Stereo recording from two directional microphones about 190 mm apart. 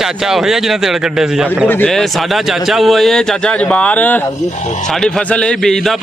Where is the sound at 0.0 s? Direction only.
Centre (ahead or behind).